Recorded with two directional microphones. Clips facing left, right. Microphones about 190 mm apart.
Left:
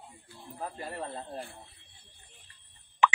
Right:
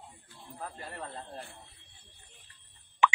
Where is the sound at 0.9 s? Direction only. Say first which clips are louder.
Left 4 dB; 25° left (ahead or behind).